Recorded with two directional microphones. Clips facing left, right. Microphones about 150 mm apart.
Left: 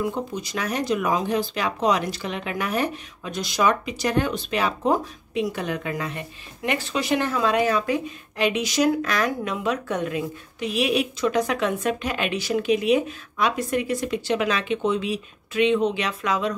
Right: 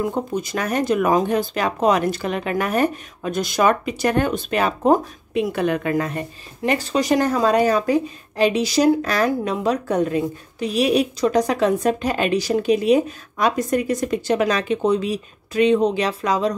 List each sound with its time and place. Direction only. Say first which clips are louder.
0.0 s speech: right 4 dB; 50° right (ahead or behind)